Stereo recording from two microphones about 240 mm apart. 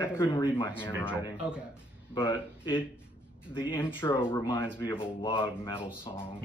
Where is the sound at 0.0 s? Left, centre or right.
Centre.